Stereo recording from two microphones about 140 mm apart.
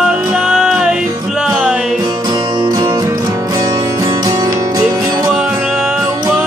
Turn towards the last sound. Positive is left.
turn(degrees=-25)  # may be behind; listen again after turning